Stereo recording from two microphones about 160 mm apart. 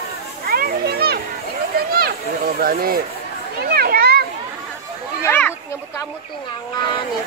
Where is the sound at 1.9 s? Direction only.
70° right (ahead or behind).